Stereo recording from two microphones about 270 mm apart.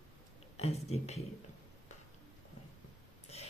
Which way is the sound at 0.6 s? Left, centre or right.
Left.